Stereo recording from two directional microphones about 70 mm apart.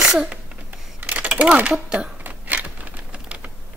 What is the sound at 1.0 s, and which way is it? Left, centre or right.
Speech, centre.